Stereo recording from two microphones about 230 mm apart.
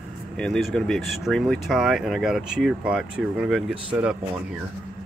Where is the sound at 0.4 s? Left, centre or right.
Centre.